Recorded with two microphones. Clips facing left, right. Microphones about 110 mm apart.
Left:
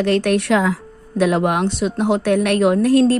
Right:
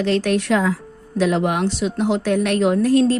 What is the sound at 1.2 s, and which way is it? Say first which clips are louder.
A woman's voice: left 2 dB; 55° left (ahead or behind).